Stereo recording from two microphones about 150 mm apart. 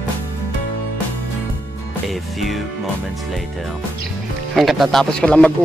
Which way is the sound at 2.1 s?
Centre (ahead or behind).